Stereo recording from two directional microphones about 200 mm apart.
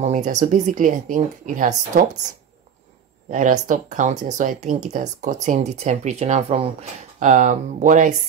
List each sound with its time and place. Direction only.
0.0 s speech: 35° right (ahead or behind)
3.3 s speech: 40° right (ahead or behind)